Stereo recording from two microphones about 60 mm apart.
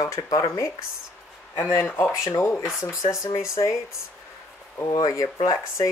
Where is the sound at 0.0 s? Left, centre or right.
Left.